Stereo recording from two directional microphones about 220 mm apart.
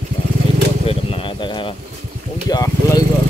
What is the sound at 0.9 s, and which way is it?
Speech, 25° left (ahead or behind).